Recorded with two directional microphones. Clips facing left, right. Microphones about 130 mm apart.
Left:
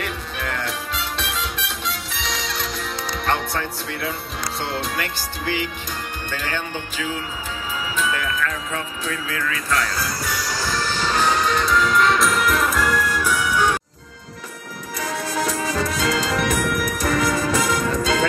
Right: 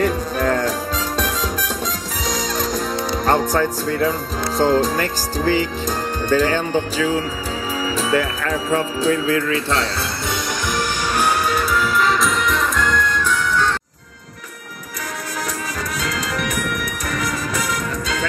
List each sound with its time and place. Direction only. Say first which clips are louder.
0.0 s music: right 10 dB; 40° right (ahead or behind)
4.6 s speech: right 11 dB; 40° right (ahead or behind)
7.9 s music: right 5 dB; 35° right (ahead or behind); by 13.7 s 10° left (ahead or behind)
15.4 s music: left 4 dB; 30° left (ahead or behind)